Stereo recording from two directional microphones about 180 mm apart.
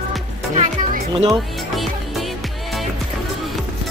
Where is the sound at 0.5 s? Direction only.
40° right (ahead or behind).